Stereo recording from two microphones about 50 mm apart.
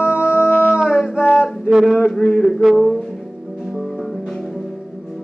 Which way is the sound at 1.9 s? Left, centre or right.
Centre.